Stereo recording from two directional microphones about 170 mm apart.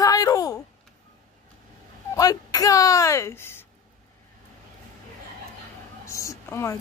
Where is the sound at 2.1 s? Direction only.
20° left (ahead or behind).